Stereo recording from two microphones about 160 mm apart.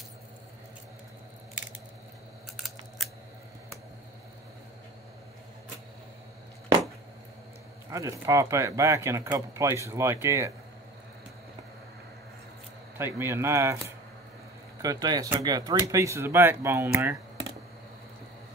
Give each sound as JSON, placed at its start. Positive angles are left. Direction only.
{"t": 2.5, "sound": "scissors", "side_deg": 0}
{"t": 7.9, "sound": "speech", "side_deg": -20}
{"t": 12.9, "sound": "speech", "side_deg": -15}